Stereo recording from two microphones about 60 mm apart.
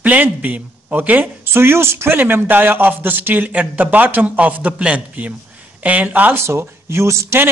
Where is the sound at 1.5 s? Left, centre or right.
Right.